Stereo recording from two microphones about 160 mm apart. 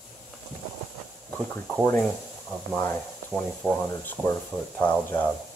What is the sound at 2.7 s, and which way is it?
Speech, 10° left (ahead or behind).